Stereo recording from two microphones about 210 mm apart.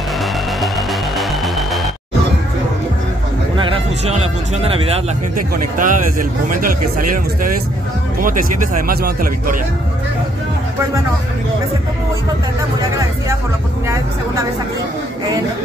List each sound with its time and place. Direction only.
0.2 s music: centre (ahead or behind)
3.5 s speech: 25° right (ahead or behind)
5.8 s speech: 40° right (ahead or behind)
8.8 s speech: 45° right (ahead or behind)